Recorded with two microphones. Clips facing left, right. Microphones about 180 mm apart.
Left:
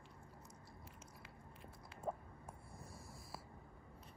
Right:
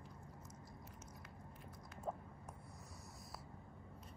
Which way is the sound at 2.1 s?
10° left (ahead or behind).